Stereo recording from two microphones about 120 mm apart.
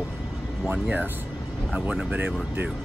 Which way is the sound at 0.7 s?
15° right (ahead or behind).